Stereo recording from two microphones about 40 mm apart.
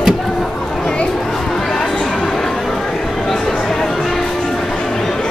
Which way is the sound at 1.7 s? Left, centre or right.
Centre.